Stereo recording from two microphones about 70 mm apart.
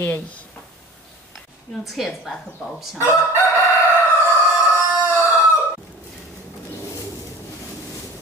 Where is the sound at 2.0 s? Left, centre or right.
Centre.